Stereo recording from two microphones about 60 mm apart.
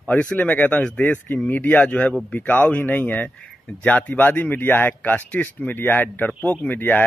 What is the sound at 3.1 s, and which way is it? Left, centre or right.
Speech, centre.